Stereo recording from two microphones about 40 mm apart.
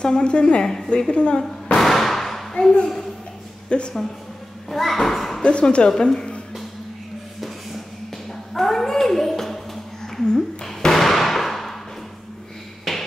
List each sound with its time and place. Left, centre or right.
0.0 s a woman's voice: left
1.4 s firecracker: centre
2.5 s a woman's voice: left
4.6 s a child's voice: centre
5.4 s a woman's voice: left
5.9 s a woman's voice: centre
7.3 s music: centre
8.3 s a sound: centre
10.2 s speech: centre
11.0 s a sound: centre
12.9 s music: centre